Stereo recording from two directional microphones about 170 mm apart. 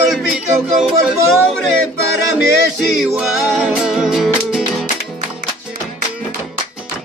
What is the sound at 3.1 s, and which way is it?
Music, 5° right (ahead or behind).